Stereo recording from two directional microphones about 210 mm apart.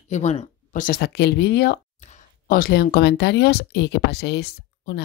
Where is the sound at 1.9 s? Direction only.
35° left (ahead or behind); by 5.0 s 55° left (ahead or behind).